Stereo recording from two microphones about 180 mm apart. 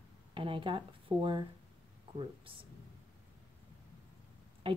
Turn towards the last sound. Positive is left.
turn(degrees=-30)  # may be behind; listen again after turning